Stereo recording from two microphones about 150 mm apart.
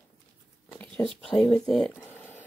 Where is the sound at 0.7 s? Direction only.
5° left (ahead or behind).